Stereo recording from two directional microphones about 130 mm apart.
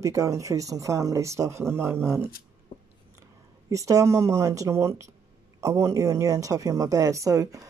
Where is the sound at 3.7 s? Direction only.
25° right (ahead or behind).